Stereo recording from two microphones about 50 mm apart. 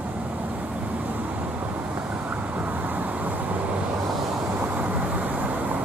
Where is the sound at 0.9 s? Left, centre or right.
Right.